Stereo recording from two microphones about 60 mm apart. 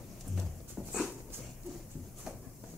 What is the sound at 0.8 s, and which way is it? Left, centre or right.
Dog, centre.